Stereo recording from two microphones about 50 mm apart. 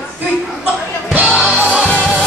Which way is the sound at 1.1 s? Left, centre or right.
Right.